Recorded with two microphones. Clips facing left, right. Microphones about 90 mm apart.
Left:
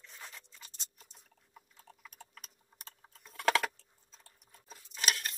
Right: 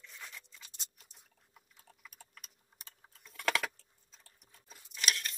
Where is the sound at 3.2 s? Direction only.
40° left (ahead or behind).